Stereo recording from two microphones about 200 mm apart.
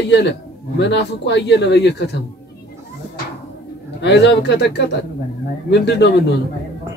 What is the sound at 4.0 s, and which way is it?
Speech, 60° left (ahead or behind).